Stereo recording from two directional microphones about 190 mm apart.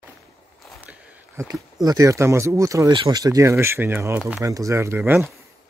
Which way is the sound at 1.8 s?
20° right (ahead or behind).